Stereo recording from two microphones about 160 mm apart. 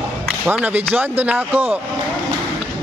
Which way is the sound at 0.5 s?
10° right (ahead or behind).